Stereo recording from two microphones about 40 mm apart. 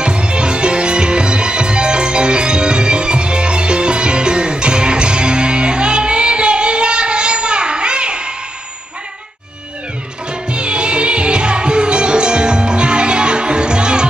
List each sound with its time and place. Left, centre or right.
0.0 s music: right
10.5 s music: right